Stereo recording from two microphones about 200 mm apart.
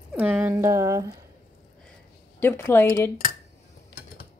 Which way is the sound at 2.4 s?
10° left (ahead or behind).